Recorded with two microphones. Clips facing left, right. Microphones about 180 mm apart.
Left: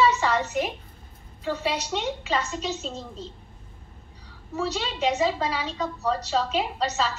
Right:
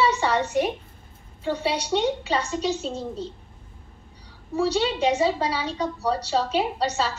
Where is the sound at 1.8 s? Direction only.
15° right (ahead or behind).